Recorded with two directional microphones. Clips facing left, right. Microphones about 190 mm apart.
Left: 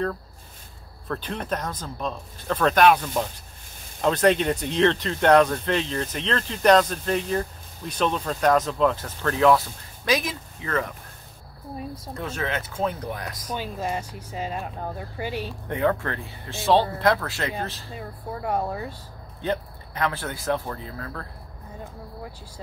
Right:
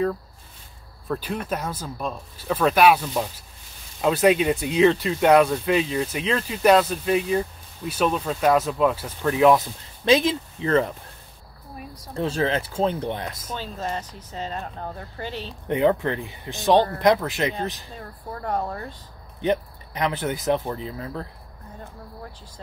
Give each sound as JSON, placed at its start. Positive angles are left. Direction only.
{"t": 1.0, "sound": "speech", "side_deg": -10}
{"t": 10.0, "sound": "speech", "side_deg": -25}
{"t": 12.2, "sound": "speech", "side_deg": -30}
{"t": 13.6, "sound": "speech", "side_deg": 10}
{"t": 15.7, "sound": "speech", "side_deg": -20}
{"t": 17.9, "sound": "speech", "side_deg": 10}
{"t": 19.4, "sound": "speech", "side_deg": -20}